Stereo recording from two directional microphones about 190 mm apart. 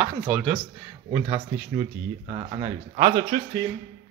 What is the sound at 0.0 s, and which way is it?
Speech, 5° right (ahead or behind).